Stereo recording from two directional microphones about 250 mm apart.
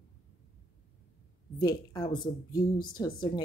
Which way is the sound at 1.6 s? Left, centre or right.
Centre.